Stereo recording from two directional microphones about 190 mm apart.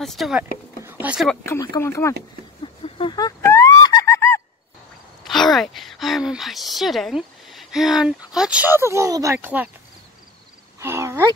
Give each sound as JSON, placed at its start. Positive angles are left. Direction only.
{"t": 0.0, "sound": "speech", "side_deg": 0}
{"t": 1.4, "sound": "speech", "side_deg": 15}
{"t": 2.6, "sound": "fowl", "side_deg": 30}
{"t": 5.2, "sound": "a woman's voice", "side_deg": 0}
{"t": 10.8, "sound": "a sound", "side_deg": -15}